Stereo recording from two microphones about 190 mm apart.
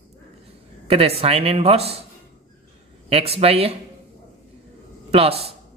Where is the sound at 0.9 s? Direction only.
30° right (ahead or behind).